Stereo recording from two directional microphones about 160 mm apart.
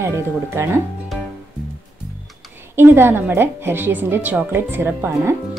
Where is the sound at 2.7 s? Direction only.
15° right (ahead or behind).